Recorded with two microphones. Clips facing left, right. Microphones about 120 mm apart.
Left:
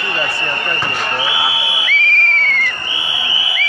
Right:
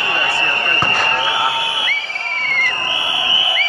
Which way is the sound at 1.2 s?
5° left (ahead or behind).